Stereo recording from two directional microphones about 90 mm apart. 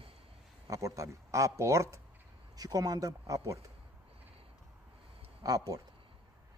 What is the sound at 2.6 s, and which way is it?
Speech, 45° right (ahead or behind).